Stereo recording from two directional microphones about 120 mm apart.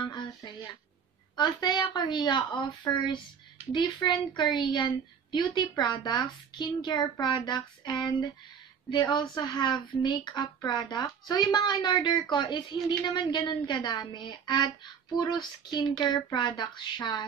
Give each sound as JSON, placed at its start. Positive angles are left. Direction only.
{"t": 0.0, "sound": "a sound", "side_deg": 35}
{"t": 1.3, "sound": "a woman's voice", "side_deg": 35}
{"t": 2.9, "sound": "speech", "side_deg": 25}
{"t": 3.7, "sound": "a woman's voice", "side_deg": 40}